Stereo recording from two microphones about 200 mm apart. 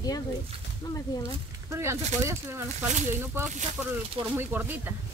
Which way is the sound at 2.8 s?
40° right (ahead or behind).